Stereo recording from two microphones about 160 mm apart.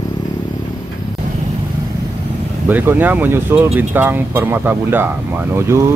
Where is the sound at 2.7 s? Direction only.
10° right (ahead or behind).